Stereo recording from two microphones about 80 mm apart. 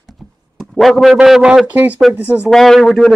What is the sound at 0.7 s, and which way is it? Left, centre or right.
A man's voice, centre.